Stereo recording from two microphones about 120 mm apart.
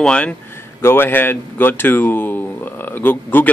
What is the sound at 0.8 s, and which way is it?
Speech, 20° left (ahead or behind).